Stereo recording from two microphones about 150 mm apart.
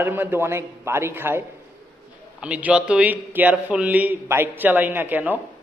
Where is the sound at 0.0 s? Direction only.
15° right (ahead or behind).